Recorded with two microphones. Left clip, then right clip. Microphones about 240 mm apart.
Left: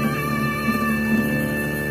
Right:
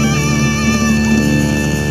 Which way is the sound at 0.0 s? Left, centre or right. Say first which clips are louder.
Right 7 dB; right.